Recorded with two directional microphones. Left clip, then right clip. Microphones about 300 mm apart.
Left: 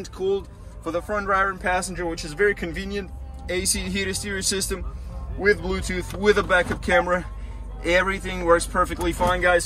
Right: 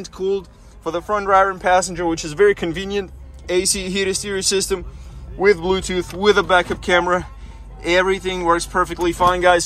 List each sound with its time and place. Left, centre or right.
0.9 s speech: centre